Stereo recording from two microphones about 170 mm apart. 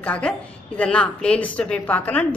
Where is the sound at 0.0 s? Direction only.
10° left (ahead or behind).